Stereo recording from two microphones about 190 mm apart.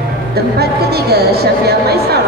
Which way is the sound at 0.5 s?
55° right (ahead or behind).